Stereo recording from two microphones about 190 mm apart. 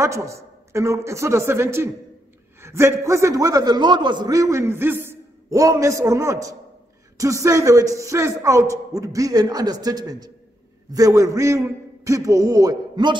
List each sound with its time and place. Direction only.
0.0 s a man's voice: 15° right (ahead or behind)